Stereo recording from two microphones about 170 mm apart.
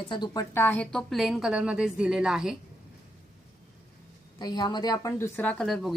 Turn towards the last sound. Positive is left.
turn(degrees=5)  # may be behind; listen again after turning